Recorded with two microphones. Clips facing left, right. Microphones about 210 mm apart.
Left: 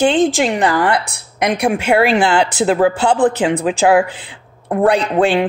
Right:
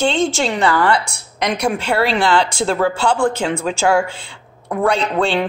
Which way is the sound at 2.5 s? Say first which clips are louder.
Left 4 dB; 15° left (ahead or behind).